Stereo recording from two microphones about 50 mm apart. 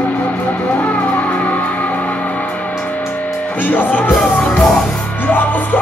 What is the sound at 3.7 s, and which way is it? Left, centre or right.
Music, left.